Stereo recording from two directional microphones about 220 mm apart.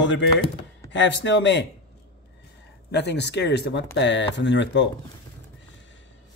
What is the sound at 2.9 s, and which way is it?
Speech, 50° left (ahead or behind).